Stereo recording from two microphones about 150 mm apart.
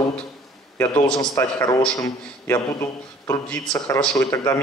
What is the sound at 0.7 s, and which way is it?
A man's voice, 15° left (ahead or behind).